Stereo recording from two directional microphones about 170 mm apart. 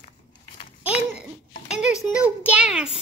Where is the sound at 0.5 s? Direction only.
35° left (ahead or behind).